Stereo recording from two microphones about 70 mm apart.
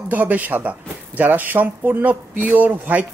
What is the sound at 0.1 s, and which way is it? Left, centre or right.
Speech, right.